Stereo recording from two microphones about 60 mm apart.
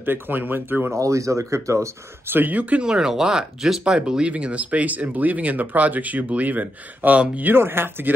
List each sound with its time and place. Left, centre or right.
0.0 s speech: right
0.9 s speech: right
2.2 s speech: right
2.8 s speech: centre
7.5 s speech: right